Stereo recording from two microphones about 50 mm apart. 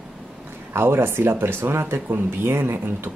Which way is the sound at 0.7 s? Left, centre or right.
Right.